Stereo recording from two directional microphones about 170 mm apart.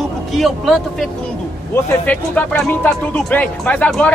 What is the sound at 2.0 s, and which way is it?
Speech, 10° left (ahead or behind).